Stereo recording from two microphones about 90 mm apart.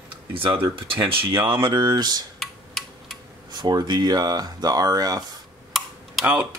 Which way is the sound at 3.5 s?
50° right (ahead or behind).